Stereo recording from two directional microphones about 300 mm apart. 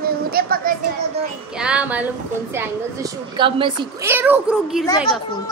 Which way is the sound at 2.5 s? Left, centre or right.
Centre.